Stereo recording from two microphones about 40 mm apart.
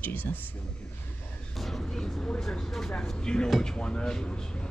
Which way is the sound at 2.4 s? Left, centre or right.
Centre.